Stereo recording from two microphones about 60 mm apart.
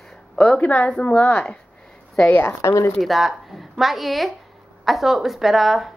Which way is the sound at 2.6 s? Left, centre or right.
Left.